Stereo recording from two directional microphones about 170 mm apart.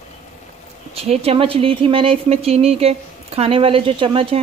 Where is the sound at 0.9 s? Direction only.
35° right (ahead or behind).